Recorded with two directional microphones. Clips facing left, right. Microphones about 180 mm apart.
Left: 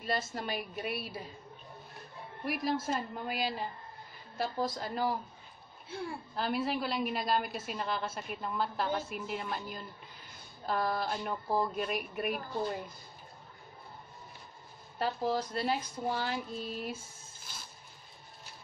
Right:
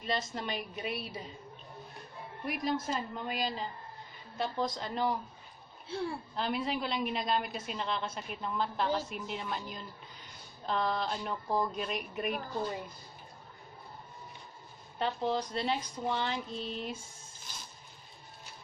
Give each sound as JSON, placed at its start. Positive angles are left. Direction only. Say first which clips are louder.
{"t": 0.0, "sound": "a woman's voice", "louder": "even", "side_deg": 5}
{"t": 2.4, "sound": "a woman's voice", "louder": "left 1 dB", "side_deg": 5}
{"t": 5.9, "sound": "speech", "louder": "right 4 dB", "side_deg": -30}
{"t": 6.3, "sound": "a woman's voice", "louder": "left 3 dB", "side_deg": 5}
{"t": 11.0, "sound": "a woman's voice", "louder": "even", "side_deg": 5}
{"t": 15.0, "sound": "a woman's voice", "louder": "even", "side_deg": 5}